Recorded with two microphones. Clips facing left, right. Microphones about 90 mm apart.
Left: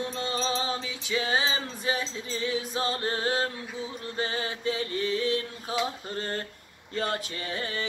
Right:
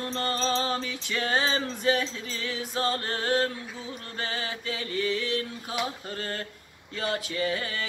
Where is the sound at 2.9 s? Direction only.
20° left (ahead or behind).